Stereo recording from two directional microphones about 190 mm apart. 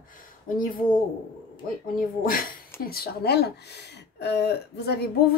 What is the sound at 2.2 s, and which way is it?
A woman's voice, 50° left (ahead or behind).